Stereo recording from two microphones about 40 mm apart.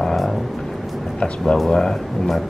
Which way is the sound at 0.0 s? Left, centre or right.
Centre.